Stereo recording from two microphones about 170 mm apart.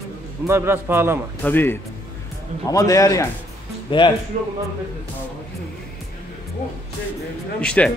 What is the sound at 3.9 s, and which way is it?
Speech, 30° left (ahead or behind).